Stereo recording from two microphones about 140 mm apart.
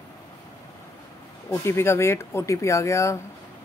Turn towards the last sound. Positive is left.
turn(degrees=20)  # may be behind; listen again after turning